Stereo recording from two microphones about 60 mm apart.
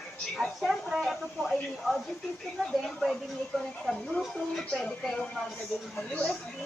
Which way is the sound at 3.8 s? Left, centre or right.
Centre.